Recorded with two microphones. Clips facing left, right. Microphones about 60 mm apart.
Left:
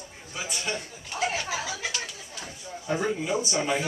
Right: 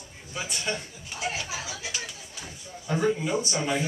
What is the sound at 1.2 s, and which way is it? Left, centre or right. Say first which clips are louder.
Speech: left 4 dB; left.